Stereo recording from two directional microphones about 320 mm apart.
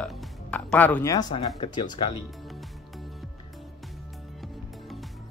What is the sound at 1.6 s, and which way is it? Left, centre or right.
Speech, centre.